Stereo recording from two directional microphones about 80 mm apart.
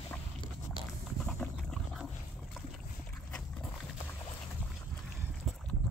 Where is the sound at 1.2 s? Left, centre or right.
Centre.